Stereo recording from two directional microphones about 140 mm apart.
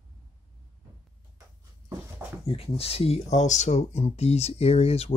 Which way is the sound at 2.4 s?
45° left (ahead or behind).